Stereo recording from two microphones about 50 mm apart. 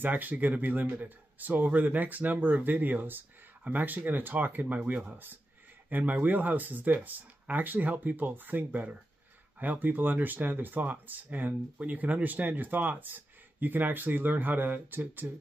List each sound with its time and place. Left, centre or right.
0.0 s speech: right